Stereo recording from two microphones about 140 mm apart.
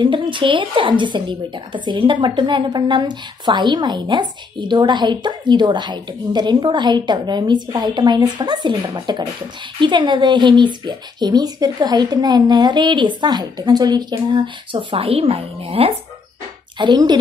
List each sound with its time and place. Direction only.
0.0 s speech: 35° right (ahead or behind)
16.7 s speech: 30° right (ahead or behind)